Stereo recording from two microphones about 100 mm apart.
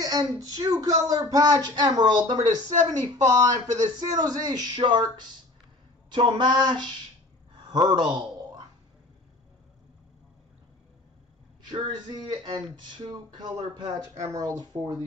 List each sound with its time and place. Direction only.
0.0 s speech: 40° right (ahead or behind)
12.3 s speech: 50° right (ahead or behind)
14.1 s speech: 35° right (ahead or behind)